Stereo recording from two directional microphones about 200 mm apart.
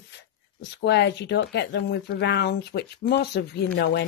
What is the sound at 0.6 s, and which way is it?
Speech, 60° left (ahead or behind).